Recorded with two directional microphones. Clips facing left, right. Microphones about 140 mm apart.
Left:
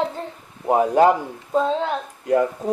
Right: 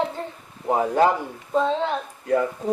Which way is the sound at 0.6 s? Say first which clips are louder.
Left 4 dB; 15° left (ahead or behind).